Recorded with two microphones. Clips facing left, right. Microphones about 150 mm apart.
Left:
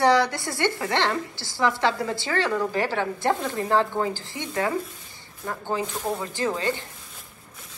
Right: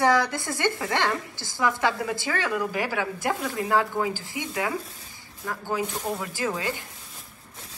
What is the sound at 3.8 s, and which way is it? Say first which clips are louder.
Speech: left 2 dB; 10° right (ahead or behind).